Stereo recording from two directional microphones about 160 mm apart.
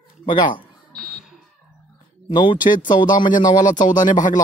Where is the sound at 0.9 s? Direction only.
Centre (ahead or behind).